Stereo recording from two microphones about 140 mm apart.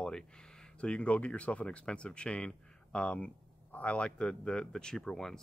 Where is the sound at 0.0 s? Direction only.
5° left (ahead or behind).